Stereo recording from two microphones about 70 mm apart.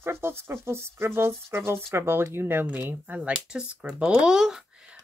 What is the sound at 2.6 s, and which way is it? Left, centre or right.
Speech, right.